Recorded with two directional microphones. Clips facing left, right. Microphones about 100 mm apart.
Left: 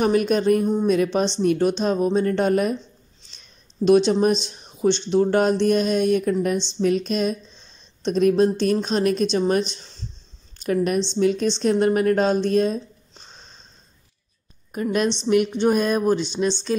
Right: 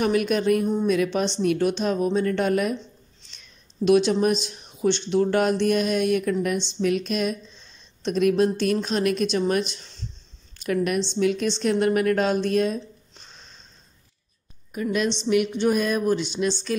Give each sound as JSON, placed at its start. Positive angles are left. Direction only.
{"t": 0.0, "sound": "a woman's voice", "side_deg": 35}
{"t": 0.7, "sound": "speech", "side_deg": 20}
{"t": 0.9, "sound": "speech", "side_deg": 30}
{"t": 3.8, "sound": "a woman's voice", "side_deg": 30}
{"t": 14.7, "sound": "a woman's voice", "side_deg": 40}